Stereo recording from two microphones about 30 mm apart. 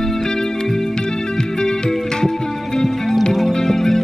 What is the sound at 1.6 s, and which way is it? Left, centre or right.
Music, left.